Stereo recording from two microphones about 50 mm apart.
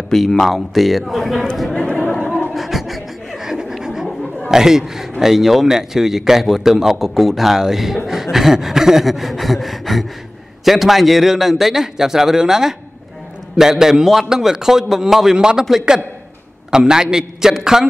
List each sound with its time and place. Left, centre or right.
0.1 s a man's voice: centre
1.7 s speech: centre
2.5 s a sound: centre
4.5 s a man's voice: centre
16.7 s a man's voice: centre